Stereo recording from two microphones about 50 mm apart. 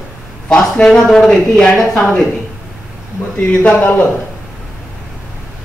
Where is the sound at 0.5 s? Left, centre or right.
Centre.